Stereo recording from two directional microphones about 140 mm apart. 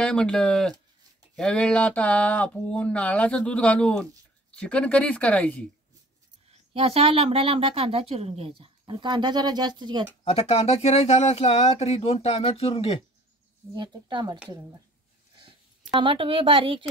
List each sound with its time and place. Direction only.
0.0 s speech: 5° left (ahead or behind)
6.7 s speech: 45° right (ahead or behind)
10.2 s speech: 50° left (ahead or behind)
13.7 s speech: 30° right (ahead or behind)
16.0 s speech: 40° right (ahead or behind)